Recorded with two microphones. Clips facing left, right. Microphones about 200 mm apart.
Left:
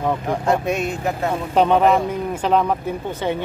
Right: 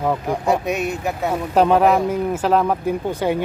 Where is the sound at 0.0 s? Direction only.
10° right (ahead or behind).